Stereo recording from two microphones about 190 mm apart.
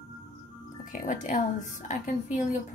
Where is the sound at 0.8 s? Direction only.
45° left (ahead or behind).